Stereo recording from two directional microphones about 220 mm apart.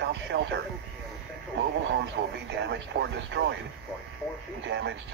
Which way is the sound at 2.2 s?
45° right (ahead or behind).